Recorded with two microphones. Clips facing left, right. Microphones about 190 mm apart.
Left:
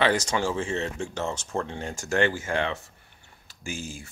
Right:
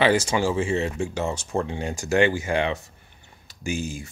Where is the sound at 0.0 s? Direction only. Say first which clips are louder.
Right 4 dB; 10° right (ahead or behind).